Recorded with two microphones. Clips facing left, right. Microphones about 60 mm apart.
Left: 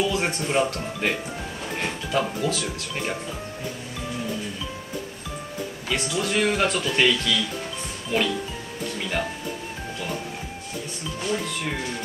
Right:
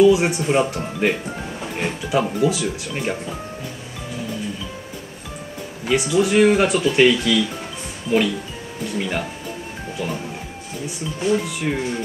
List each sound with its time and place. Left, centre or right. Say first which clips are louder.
0.0 s speech: right 10 dB; centre
5.9 s speech: right 9 dB; centre
11.1 s speech: right 7 dB; centre